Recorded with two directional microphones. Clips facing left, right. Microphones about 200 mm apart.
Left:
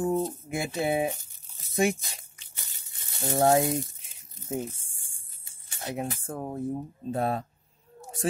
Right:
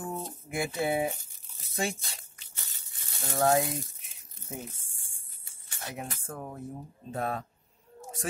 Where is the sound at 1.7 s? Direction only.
15° left (ahead or behind).